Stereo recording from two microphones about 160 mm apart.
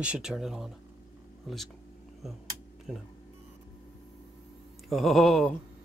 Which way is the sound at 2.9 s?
5° left (ahead or behind).